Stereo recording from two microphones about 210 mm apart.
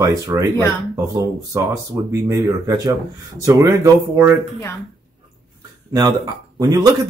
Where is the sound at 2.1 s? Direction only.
15° right (ahead or behind).